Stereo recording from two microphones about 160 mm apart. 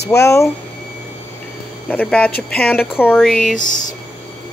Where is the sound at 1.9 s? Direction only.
5° left (ahead or behind).